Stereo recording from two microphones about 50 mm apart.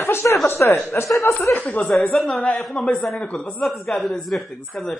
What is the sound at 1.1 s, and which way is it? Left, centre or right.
Speech, centre.